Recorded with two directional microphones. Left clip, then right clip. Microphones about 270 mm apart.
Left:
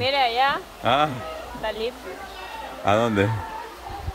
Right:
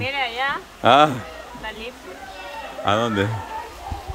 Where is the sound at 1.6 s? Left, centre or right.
Left.